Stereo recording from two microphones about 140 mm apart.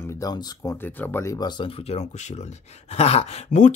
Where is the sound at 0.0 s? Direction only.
20° left (ahead or behind).